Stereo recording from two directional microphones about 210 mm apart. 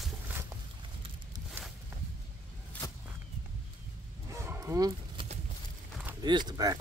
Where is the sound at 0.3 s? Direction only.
10° right (ahead or behind).